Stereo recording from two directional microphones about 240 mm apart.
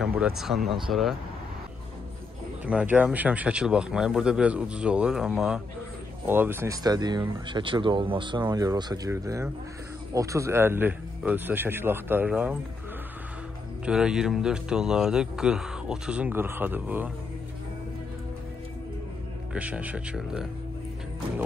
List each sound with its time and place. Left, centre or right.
0.0 s speech: centre
2.6 s speech: centre
13.8 s speech: centre
19.5 s speech: centre